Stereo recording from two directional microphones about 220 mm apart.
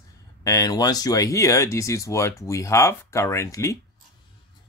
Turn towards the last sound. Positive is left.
turn(degrees=15)  # may be behind; listen again after turning